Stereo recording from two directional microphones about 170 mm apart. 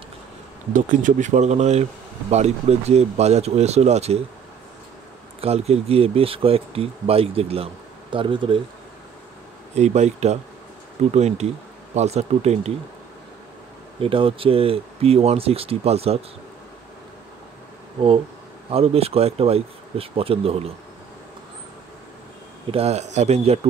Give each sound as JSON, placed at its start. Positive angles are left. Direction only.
{"t": 0.7, "sound": "speech", "side_deg": -50}
{"t": 5.4, "sound": "speech", "side_deg": -35}
{"t": 9.8, "sound": "speech", "side_deg": -40}
{"t": 13.9, "sound": "speech", "side_deg": -30}
{"t": 18.7, "sound": "speech", "side_deg": -35}
{"t": 22.7, "sound": "speech", "side_deg": -35}